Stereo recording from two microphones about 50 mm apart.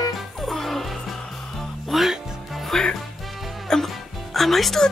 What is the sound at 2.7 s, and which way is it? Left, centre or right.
Music, centre.